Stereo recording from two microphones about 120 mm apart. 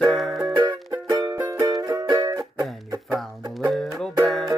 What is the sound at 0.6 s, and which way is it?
Music, 35° right (ahead or behind).